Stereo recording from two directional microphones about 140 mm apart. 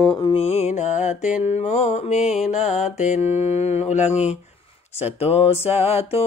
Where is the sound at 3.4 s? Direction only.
45° left (ahead or behind).